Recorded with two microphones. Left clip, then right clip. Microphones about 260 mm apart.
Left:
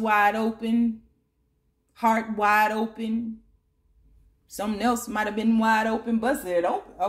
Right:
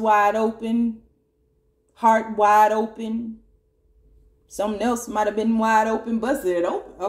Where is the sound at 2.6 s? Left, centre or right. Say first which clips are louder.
Right 6 dB; left.